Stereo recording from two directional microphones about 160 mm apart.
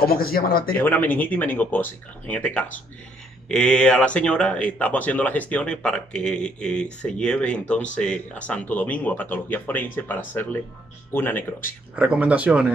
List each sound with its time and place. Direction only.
0.0 s speech: 70° left (ahead or behind)
0.7 s speech: 10° left (ahead or behind)
11.9 s speech: 10° right (ahead or behind)